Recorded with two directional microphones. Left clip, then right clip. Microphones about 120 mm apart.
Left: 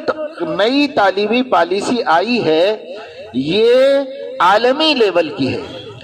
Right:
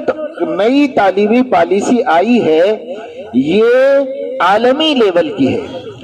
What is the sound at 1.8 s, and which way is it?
A man's voice, 45° right (ahead or behind).